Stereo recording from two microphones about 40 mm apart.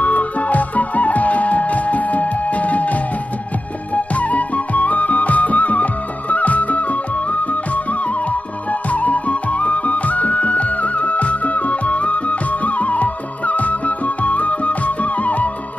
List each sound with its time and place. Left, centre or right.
0.0 s music: left
8.9 s music: left